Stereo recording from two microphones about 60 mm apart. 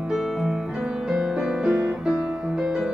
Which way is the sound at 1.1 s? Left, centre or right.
Centre.